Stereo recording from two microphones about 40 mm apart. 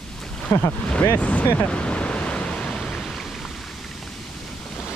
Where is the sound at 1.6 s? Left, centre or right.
Left.